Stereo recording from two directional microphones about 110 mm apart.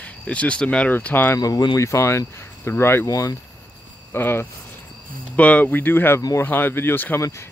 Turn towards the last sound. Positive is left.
turn(degrees=20)  # may be behind; listen again after turning